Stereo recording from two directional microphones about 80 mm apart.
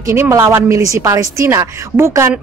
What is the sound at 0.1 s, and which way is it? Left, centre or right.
A woman's voice, right.